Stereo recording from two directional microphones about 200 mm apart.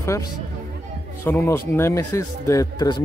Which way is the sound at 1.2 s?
15° left (ahead or behind).